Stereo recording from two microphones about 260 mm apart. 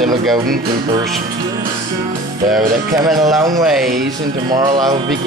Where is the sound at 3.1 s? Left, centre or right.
Centre.